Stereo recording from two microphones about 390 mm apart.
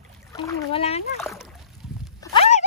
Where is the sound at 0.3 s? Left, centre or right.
Centre.